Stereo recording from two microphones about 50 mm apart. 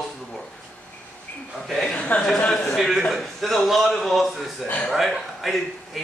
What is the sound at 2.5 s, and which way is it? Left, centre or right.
A man's voice, centre.